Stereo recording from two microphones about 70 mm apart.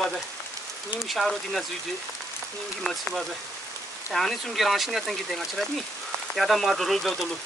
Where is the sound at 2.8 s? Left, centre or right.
Centre.